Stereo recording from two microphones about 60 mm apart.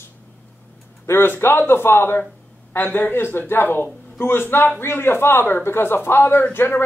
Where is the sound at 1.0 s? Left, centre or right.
Left.